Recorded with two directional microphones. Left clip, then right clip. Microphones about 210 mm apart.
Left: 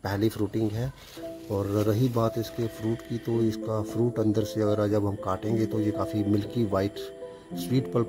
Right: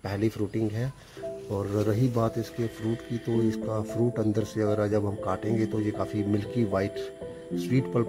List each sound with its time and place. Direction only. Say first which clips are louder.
0.4 s speech: left 1 dB; 20° left (ahead or behind)